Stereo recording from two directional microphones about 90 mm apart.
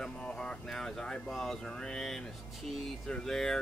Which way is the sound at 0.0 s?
10° left (ahead or behind).